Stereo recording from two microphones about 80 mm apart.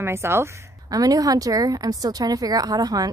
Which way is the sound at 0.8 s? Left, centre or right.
Right.